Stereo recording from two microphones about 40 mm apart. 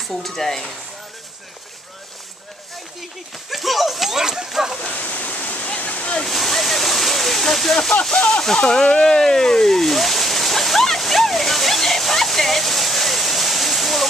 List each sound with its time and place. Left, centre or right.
0.0 s speech: centre
3.4 s a sound: centre
4.5 s speech: centre
4.9 s waterfall: left
6.2 s waterfall: centre
8.0 s speech: left
8.8 s a sound: centre